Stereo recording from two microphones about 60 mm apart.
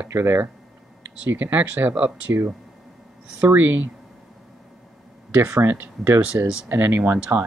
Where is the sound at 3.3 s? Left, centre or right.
Right.